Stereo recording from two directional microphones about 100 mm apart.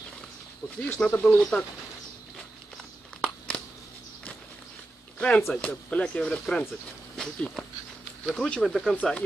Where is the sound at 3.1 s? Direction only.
10° left (ahead or behind).